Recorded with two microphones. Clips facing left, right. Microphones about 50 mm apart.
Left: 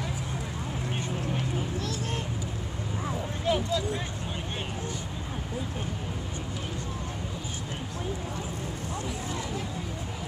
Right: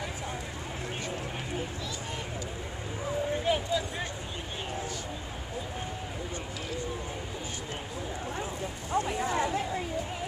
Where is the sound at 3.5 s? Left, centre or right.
Centre.